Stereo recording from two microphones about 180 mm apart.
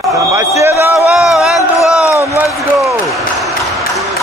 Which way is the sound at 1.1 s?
Centre (ahead or behind).